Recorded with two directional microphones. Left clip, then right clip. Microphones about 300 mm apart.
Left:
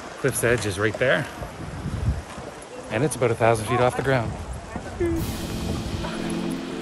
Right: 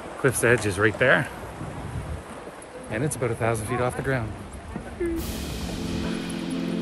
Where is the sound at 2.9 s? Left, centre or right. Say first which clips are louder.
Left 5 dB; centre.